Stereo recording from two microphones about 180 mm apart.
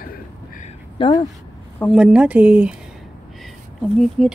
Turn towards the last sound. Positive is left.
turn(degrees=0)  # may be behind; listen again after turning